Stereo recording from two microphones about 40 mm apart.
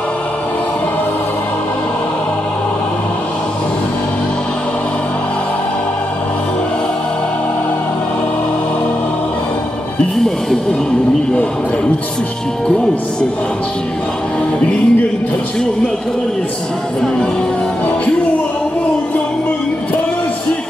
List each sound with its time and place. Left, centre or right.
12.6 s speech: left
14.6 s music: left